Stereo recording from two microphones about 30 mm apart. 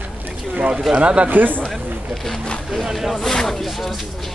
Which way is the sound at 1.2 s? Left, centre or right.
Right.